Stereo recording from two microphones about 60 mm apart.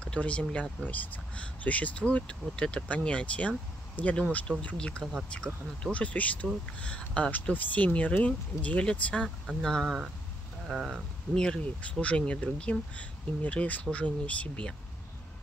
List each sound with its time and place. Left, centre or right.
0.0 s speech: left
9.6 s speech: centre